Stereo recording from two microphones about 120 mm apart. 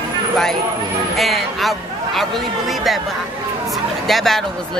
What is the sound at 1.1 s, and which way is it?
A man's voice, centre (ahead or behind).